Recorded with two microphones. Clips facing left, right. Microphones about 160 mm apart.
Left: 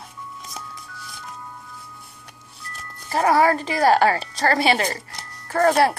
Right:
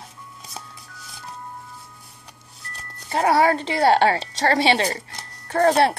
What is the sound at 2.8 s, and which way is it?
A woman's voice, 25° right (ahead or behind).